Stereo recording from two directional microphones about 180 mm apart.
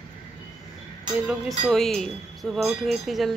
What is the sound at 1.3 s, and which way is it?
Speech, centre (ahead or behind).